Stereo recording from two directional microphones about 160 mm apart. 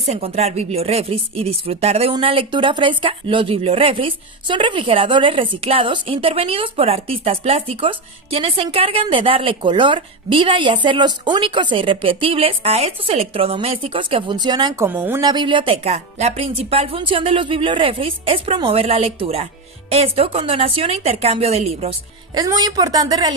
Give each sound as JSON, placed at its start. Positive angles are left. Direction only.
{"t": 0.0, "sound": "speech", "side_deg": -40}
{"t": 14.9, "sound": "speech", "side_deg": -15}
{"t": 15.2, "sound": "speech", "side_deg": -30}
{"t": 22.3, "sound": "a woman's voice", "side_deg": -25}